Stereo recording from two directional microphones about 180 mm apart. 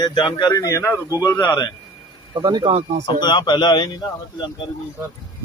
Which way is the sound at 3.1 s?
25° left (ahead or behind).